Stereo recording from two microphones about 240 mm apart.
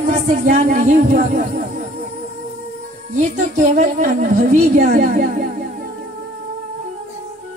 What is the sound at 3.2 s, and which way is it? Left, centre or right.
A man's voice, right.